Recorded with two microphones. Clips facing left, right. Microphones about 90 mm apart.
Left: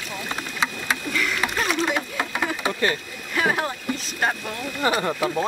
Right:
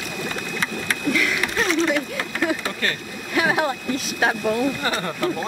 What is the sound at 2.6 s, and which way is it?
Speech, 20° left (ahead or behind).